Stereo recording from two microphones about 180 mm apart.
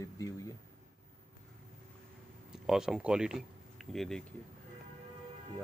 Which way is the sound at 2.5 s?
5° right (ahead or behind).